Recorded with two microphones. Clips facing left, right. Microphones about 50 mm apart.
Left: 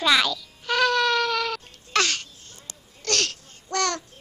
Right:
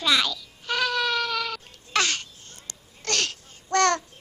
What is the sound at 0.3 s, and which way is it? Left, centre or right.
Babbling, centre.